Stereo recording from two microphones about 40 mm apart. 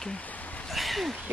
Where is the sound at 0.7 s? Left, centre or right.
Centre.